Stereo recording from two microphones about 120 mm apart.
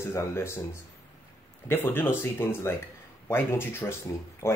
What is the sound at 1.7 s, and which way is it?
Speech, 20° left (ahead or behind).